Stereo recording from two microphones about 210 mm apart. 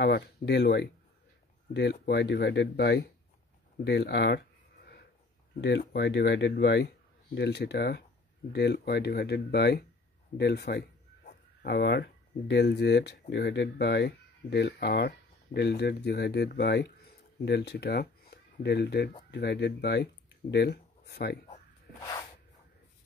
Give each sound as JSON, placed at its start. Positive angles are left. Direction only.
{"t": 0.0, "sound": "speech", "side_deg": 55}
{"t": 5.6, "sound": "speech", "side_deg": 55}